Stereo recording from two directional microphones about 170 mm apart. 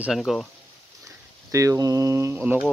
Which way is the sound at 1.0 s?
20° right (ahead or behind).